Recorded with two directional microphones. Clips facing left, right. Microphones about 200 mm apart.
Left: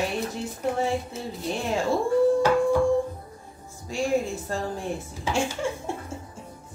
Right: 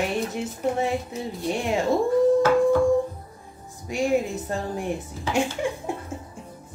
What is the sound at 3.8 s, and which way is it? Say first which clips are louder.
A woman's voice: right 2 dB; 15° right (ahead or behind).